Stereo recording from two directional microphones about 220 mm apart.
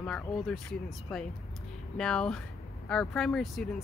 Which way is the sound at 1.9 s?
5° left (ahead or behind).